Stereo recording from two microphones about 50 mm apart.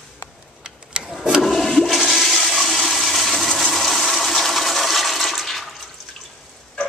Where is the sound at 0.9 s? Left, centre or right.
Centre.